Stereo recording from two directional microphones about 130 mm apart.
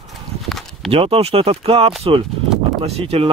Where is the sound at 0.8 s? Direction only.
45° right (ahead or behind).